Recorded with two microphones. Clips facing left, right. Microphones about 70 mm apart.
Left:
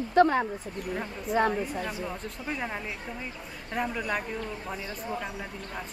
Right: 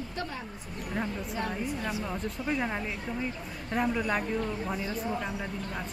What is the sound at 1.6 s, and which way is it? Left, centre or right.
A woman's voice, centre.